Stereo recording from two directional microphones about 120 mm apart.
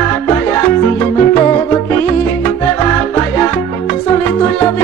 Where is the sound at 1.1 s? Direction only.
15° left (ahead or behind).